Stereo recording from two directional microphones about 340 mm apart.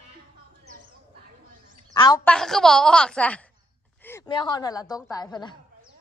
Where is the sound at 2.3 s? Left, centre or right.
Centre.